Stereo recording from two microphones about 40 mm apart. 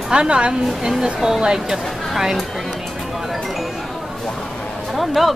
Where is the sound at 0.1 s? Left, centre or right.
Right.